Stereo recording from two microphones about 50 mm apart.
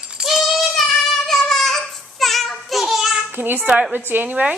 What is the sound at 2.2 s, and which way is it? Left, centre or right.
Child singing, centre.